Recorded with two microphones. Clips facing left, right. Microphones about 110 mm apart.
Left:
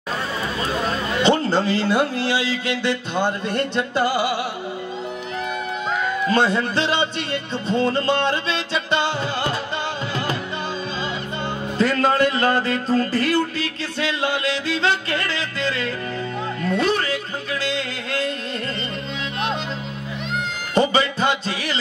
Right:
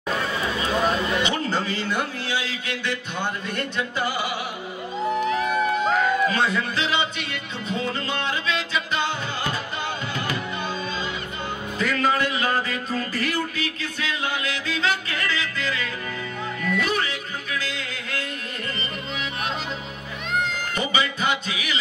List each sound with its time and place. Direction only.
1.2 s music: 30° left (ahead or behind)
6.3 s music: 30° left (ahead or behind)
11.8 s music: 35° left (ahead or behind)
20.7 s music: 35° left (ahead or behind)